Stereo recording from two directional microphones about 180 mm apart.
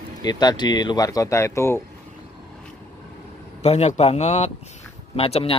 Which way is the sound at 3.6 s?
35° left (ahead or behind).